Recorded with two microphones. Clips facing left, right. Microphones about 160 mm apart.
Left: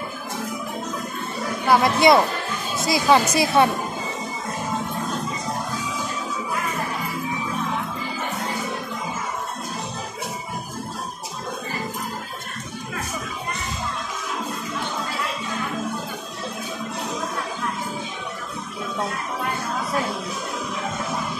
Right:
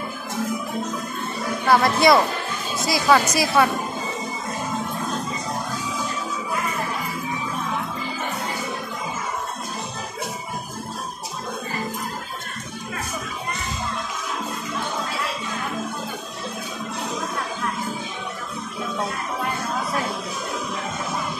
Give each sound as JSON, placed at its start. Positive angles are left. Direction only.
{"t": 1.7, "sound": "speech", "side_deg": 15}